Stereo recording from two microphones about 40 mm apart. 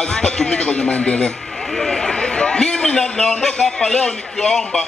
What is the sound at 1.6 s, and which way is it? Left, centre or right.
A man's voice, centre.